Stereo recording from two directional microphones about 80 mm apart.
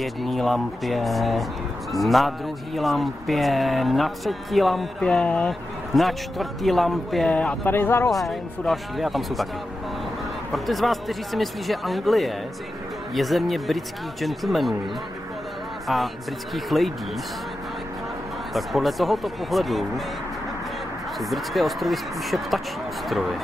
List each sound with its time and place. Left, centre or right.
0.0 s speech: centre
5.2 s speech: centre
5.5 s speech: centre
7.3 s speech: centre
7.7 s speech: left
8.1 s speech: centre
10.5 s speech: centre
15.9 s speech: centre
18.5 s speech: centre
21.2 s speech: centre